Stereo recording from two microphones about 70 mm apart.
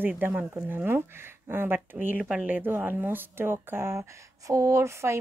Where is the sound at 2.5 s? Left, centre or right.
Right.